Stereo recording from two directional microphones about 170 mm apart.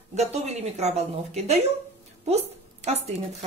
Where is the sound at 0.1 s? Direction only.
40° right (ahead or behind).